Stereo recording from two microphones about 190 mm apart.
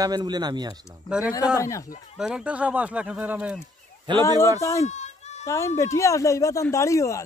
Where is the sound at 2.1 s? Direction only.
5° right (ahead or behind).